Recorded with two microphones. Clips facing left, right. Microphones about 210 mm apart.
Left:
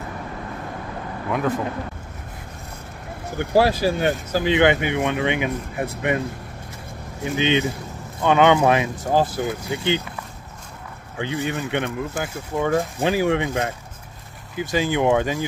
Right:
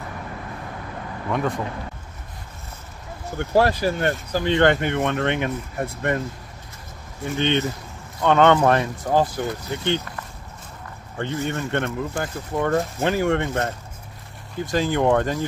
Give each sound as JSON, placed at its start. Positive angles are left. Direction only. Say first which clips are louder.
{"t": 3.3, "sound": "speech", "louder": "left 1 dB", "side_deg": 10}
{"t": 7.3, "sound": "speech", "louder": "left 1 dB", "side_deg": 90}
{"t": 8.2, "sound": "speech", "louder": "even", "side_deg": 5}
{"t": 11.3, "sound": "speech", "louder": "even", "side_deg": 5}